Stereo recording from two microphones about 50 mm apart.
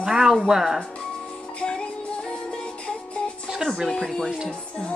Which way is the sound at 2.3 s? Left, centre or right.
Left.